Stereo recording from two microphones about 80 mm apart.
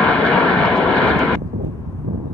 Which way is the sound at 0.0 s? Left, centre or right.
Centre.